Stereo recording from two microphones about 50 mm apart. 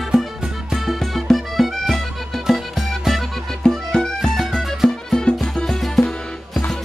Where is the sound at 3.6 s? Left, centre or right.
Centre.